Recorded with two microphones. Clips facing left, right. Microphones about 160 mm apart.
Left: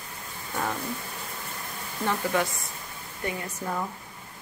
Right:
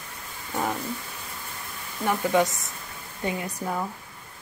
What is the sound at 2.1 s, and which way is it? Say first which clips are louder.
A woman's voice: right 4 dB; 20° right (ahead or behind).